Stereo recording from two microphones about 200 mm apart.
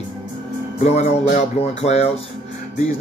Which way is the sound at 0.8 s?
35° left (ahead or behind).